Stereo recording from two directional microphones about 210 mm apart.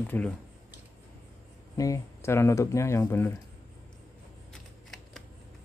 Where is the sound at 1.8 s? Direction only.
15° left (ahead or behind).